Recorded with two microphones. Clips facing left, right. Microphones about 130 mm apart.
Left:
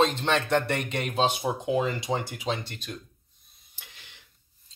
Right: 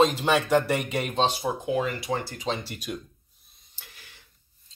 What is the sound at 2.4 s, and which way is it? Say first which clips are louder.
Speech: right 1 dB; centre (ahead or behind).